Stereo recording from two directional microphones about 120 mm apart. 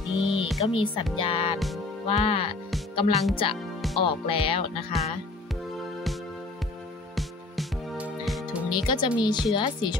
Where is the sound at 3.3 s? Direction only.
50° left (ahead or behind).